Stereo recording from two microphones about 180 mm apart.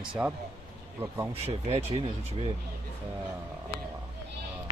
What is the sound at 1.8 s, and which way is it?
Speech, 35° right (ahead or behind).